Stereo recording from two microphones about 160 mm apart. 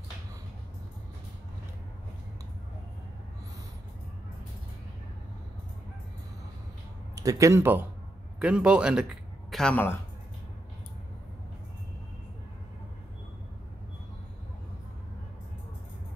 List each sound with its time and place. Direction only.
7.2 s a man's voice: 20° right (ahead or behind); by 9.9 s 10° left (ahead or behind)